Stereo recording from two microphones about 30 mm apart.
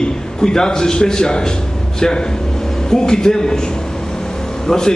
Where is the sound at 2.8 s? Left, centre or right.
Left.